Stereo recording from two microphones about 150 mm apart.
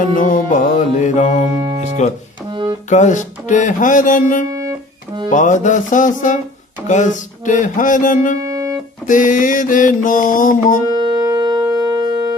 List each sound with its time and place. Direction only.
0.0 s mantra: 65° left (ahead or behind)
1.6 s music: 35° right (ahead or behind)
2.9 s mantra: 55° left (ahead or behind)
4.5 s music: 25° right (ahead or behind)
5.3 s mantra: 55° left (ahead or behind)
8.5 s music: 25° right (ahead or behind)
9.0 s mantra: 60° left (ahead or behind)
11.0 s music: 25° right (ahead or behind)
11.8 s a sound: 25° right (ahead or behind)